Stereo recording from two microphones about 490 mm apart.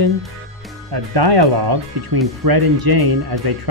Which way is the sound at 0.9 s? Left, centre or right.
Right.